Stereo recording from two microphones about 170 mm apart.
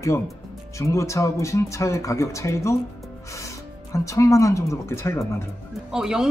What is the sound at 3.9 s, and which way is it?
Speech, 20° left (ahead or behind).